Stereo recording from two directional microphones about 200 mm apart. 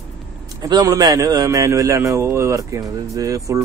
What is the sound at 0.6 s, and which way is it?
A man's voice, 20° right (ahead or behind).